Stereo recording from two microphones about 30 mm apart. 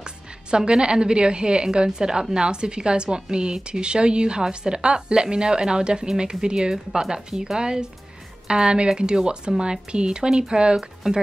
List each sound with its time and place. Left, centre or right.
0.5 s a woman's voice: right
11.0 s speech: centre